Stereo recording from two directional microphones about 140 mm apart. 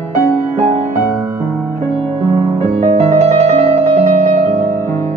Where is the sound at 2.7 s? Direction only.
50° right (ahead or behind).